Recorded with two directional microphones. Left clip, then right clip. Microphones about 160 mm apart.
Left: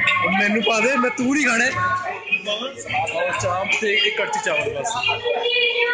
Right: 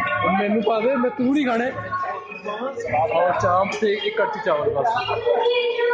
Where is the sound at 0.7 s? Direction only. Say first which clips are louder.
Left 2 dB; 5° right (ahead or behind).